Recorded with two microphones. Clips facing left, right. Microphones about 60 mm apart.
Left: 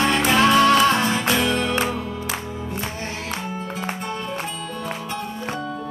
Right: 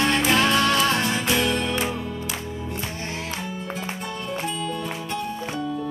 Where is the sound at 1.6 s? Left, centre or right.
Left.